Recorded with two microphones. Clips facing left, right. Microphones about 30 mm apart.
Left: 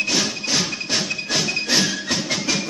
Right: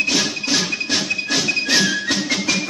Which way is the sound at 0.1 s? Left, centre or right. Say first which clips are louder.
Right 2 dB; centre.